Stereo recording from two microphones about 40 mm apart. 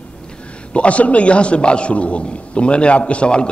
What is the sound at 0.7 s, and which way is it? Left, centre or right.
A man's voice, left.